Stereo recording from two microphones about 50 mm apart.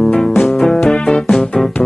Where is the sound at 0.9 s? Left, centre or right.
Centre.